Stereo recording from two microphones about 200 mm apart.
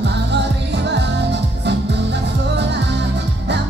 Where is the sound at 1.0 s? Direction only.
60° right (ahead or behind).